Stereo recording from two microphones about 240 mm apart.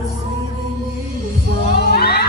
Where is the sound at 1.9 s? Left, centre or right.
Left.